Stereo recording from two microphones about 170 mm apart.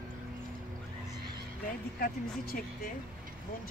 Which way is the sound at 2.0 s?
60° left (ahead or behind).